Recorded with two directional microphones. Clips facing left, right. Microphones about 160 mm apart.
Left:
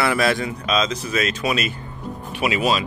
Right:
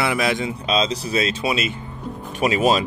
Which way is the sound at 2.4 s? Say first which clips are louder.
Right 3 dB; 40° right (ahead or behind).